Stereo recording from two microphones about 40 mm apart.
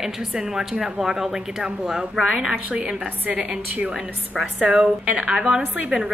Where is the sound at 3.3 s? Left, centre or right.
Right.